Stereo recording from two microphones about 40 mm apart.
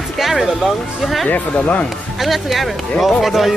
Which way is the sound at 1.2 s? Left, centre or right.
Left.